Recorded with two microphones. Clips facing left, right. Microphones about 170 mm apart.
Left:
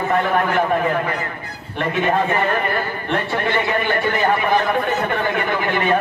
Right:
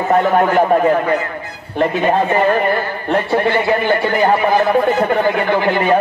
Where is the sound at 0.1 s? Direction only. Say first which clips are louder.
Right 7 dB; 35° right (ahead or behind).